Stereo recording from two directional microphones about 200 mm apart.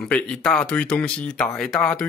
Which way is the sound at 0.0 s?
5° left (ahead or behind).